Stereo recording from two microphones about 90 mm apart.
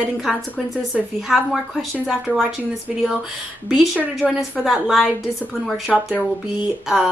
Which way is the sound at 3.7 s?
10° right (ahead or behind).